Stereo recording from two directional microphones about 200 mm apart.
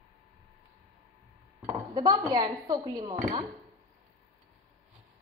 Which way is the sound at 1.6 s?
20° right (ahead or behind).